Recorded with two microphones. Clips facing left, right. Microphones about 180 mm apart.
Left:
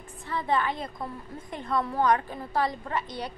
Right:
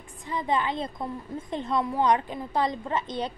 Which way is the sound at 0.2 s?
15° right (ahead or behind).